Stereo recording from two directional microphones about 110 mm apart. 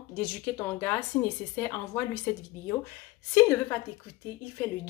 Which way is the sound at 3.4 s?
20° left (ahead or behind).